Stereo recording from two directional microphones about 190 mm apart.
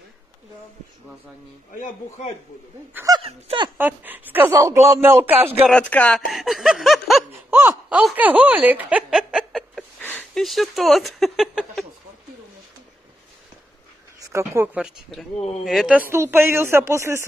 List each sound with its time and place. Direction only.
1.7 s a man's voice: 45° left (ahead or behind)
2.9 s speech: 15° right (ahead or behind)
3.2 s speech: 30° right (ahead or behind)
3.7 s speech: 10° right (ahead or behind)
5.7 s speech: 5° left (ahead or behind)
7.5 s a sound: 10° right (ahead or behind)
9.9 s speech: 10° left (ahead or behind)
14.2 s speech: 15° right (ahead or behind)